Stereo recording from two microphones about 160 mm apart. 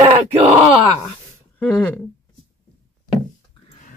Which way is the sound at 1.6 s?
10° left (ahead or behind).